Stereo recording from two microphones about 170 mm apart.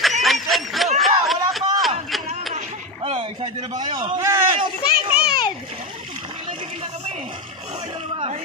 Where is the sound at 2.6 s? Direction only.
35° right (ahead or behind).